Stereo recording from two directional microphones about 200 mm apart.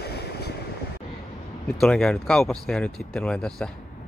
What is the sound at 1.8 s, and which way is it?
Speech, 5° left (ahead or behind).